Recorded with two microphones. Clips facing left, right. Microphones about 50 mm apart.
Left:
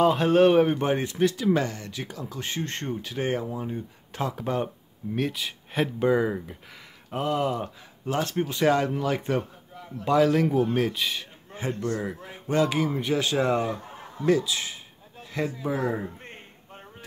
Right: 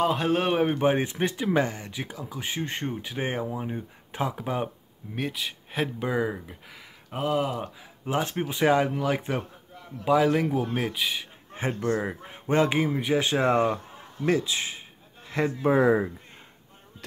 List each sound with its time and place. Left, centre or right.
0.0 s speech: centre
0.9 s speech: right; by 7.7 s centre
8.0 s speech: centre
11.5 s a man's voice: right
13.8 s chuckle: left
14.2 s a man's voice: right
15.4 s speech: right